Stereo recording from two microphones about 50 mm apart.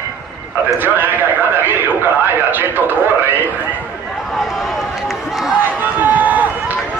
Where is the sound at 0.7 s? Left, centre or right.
Right.